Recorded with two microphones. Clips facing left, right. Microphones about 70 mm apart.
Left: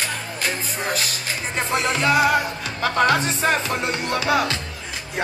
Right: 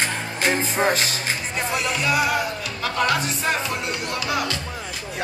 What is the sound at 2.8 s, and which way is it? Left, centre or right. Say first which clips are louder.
Music: left 4 dB; left.